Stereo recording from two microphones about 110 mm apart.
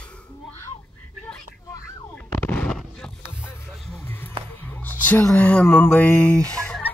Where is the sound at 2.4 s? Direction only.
10° left (ahead or behind).